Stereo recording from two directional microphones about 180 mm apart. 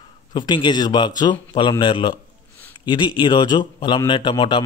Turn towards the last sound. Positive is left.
turn(degrees=25)  # may be behind; listen again after turning